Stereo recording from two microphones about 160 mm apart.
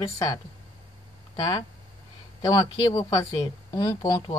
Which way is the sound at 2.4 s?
20° left (ahead or behind).